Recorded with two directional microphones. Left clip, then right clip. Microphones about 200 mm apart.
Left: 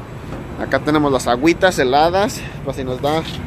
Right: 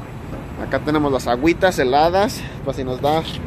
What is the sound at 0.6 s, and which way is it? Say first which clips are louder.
Speech: left 3 dB; 10° left (ahead or behind).